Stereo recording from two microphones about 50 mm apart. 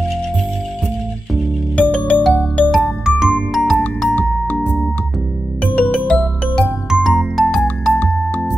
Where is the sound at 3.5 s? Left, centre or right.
Centre.